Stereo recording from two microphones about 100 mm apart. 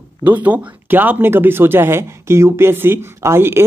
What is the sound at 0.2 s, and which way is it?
Speech, 15° right (ahead or behind).